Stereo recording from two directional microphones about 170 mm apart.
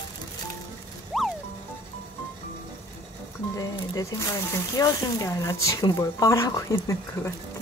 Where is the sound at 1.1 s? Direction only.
Centre (ahead or behind).